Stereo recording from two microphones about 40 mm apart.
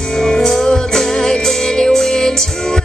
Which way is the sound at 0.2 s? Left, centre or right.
Centre.